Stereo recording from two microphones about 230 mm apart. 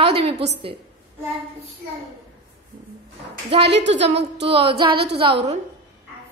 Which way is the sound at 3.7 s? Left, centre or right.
Right.